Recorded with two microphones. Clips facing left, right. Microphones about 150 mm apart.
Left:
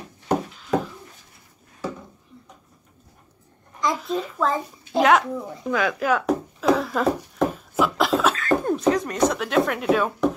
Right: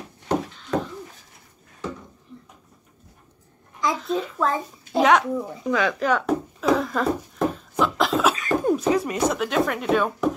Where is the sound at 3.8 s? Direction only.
Centre (ahead or behind).